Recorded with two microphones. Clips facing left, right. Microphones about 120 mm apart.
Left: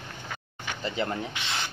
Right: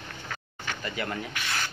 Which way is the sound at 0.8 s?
25° left (ahead or behind).